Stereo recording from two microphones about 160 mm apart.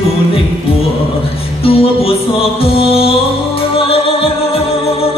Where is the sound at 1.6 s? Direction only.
35° left (ahead or behind).